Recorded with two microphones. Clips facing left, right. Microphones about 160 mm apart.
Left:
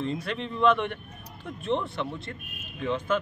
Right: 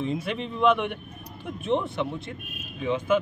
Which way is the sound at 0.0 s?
15° right (ahead or behind).